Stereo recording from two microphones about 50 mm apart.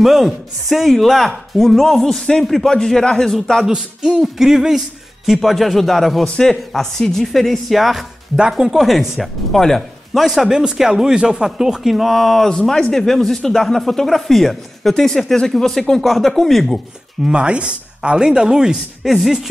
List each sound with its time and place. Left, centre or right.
0.0 s a man's voice: centre
3.6 s a man's voice: centre
10.6 s a man's voice: centre
17.2 s speech: centre